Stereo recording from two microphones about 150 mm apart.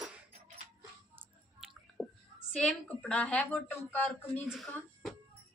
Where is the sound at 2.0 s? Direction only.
20° left (ahead or behind).